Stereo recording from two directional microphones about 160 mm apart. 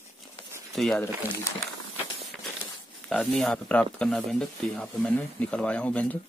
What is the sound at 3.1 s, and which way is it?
Speech, 5° left (ahead or behind).